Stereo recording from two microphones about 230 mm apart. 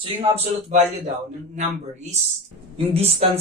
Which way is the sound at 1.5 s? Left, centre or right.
Right.